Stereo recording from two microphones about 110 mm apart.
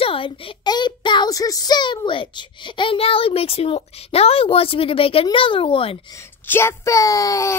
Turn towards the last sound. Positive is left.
turn(degrees=30)  # may be behind; listen again after turning